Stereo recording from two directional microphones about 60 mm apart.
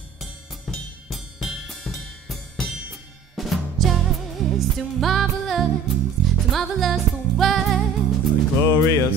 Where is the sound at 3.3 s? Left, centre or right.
Centre.